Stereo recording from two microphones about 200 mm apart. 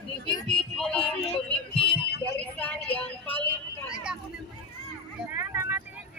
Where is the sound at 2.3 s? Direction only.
5° left (ahead or behind).